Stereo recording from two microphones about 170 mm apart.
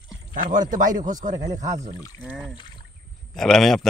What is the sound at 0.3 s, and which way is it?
Speech, 50° right (ahead or behind).